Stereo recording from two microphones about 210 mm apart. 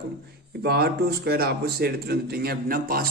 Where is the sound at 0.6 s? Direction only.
50° right (ahead or behind).